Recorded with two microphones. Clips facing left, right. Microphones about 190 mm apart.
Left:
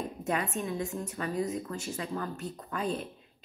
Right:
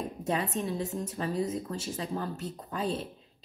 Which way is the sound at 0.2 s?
35° right (ahead or behind).